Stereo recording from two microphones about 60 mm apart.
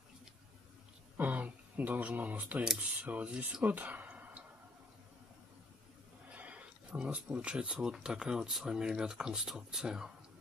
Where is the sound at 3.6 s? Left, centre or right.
Right.